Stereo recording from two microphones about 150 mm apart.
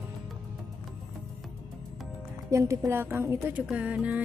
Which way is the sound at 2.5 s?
20° right (ahead or behind).